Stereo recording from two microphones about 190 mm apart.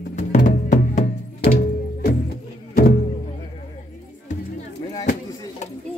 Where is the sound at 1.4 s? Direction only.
55° left (ahead or behind).